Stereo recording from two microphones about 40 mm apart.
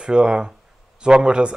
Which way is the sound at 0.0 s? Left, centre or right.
Right.